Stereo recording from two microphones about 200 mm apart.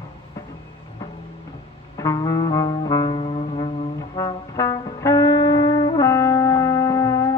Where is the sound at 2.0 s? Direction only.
20° left (ahead or behind).